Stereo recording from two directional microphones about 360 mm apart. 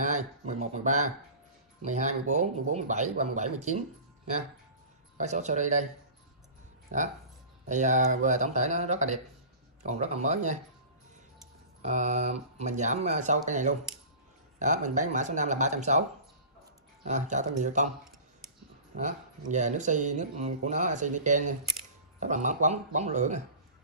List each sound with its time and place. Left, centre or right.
0.0 s speech: centre
5.1 s speech: centre
6.9 s speech: right
11.8 s speech: centre
17.0 s speech: centre
18.9 s speech: right